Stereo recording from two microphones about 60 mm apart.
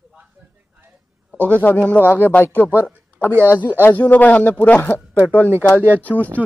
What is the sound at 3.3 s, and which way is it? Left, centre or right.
Speech, right.